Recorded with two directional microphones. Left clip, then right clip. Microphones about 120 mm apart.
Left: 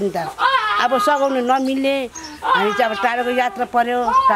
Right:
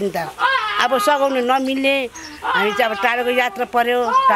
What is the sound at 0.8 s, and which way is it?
Speech, 5° right (ahead or behind).